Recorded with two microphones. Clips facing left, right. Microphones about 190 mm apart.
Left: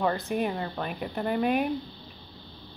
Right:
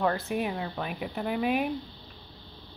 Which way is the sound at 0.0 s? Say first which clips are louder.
Left 1 dB; centre (ahead or behind).